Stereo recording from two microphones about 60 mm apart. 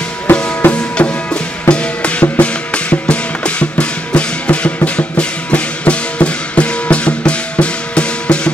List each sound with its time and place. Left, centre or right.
0.3 s music: left
0.7 s music: left